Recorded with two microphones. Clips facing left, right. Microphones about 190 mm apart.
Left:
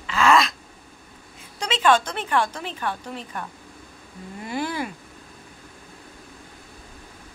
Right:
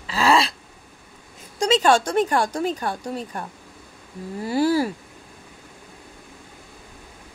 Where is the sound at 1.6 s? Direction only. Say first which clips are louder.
Right 3 dB; 40° right (ahead or behind).